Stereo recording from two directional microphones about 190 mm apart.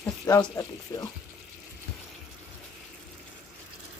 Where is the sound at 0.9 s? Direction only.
20° left (ahead or behind).